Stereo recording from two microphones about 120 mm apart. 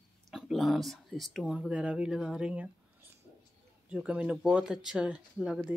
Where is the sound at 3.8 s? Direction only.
10° right (ahead or behind).